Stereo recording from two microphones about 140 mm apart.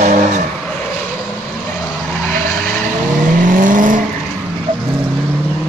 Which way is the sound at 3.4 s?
70° right (ahead or behind).